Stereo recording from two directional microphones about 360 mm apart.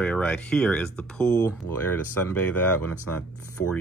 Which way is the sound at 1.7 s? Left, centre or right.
Left.